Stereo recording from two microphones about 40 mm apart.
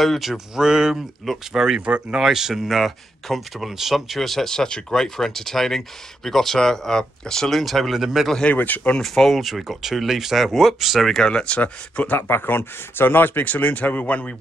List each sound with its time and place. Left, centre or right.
0.0 s speech: centre
0.6 s speech: centre
1.9 s speech: right
2.1 s speech: centre
7.5 s speech: centre
7.9 s speech: centre
8.5 s speech: left
9.0 s speech: centre
9.4 s speech: centre
11.1 s speech: centre
11.3 s speech: left
12.1 s speech: left
13.5 s speech: left